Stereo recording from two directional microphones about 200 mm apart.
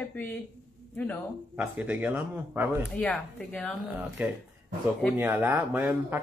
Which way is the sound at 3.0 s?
5° left (ahead or behind).